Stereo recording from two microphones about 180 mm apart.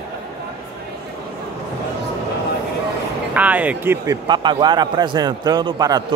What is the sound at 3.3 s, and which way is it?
A man's voice, 10° right (ahead or behind).